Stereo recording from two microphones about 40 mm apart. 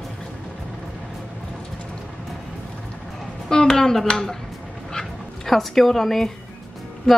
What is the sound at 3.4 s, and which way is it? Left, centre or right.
Speech, centre.